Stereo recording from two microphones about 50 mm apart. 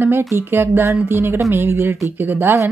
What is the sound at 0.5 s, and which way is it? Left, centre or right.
Speech, right.